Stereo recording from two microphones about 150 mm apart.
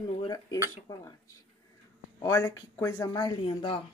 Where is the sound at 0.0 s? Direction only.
30° left (ahead or behind).